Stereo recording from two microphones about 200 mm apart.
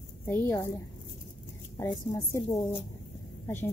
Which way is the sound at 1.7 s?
15° left (ahead or behind).